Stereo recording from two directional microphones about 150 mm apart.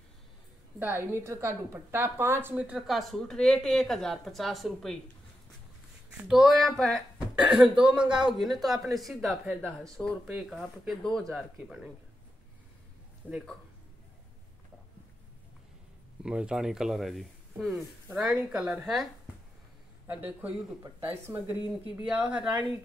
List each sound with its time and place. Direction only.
0.7 s a woman's voice: 15° right (ahead or behind)
6.2 s a woman's voice: 5° right (ahead or behind)
7.3 s a woman's voice: 10° right (ahead or behind)
13.2 s a woman's voice: 5° left (ahead or behind)
16.2 s a woman's voice: 5° right (ahead or behind)
20.1 s a woman's voice: 10° right (ahead or behind)